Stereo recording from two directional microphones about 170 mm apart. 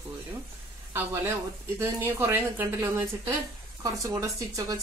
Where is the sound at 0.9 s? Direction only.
15° right (ahead or behind).